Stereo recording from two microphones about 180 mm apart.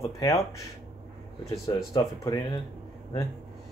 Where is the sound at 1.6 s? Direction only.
20° left (ahead or behind).